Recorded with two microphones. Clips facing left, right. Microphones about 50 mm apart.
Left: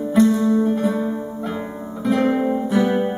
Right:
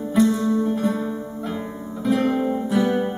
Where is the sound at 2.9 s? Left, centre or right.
Centre.